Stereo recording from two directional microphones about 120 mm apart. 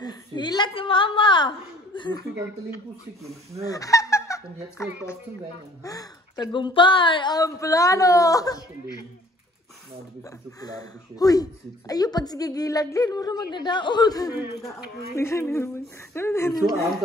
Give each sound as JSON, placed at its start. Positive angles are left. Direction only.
{"t": 0.0, "sound": "a woman's voice", "side_deg": 35}
{"t": 3.6, "sound": "speech", "side_deg": 30}
{"t": 10.6, "sound": "speech", "side_deg": 30}
{"t": 15.1, "sound": "speech", "side_deg": 20}